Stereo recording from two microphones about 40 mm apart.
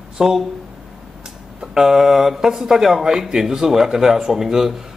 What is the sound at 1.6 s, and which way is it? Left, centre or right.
Speech, centre.